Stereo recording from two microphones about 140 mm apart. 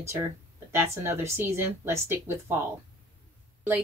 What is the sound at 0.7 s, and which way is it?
A woman's voice, 20° right (ahead or behind).